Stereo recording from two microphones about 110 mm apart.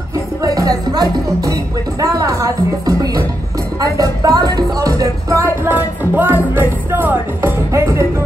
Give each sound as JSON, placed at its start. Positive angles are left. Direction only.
{"t": 0.4, "sound": "music", "side_deg": -35}
{"t": 5.7, "sound": "music", "side_deg": -20}